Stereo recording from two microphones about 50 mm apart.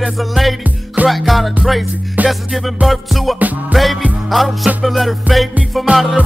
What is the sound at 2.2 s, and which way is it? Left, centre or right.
Music, right.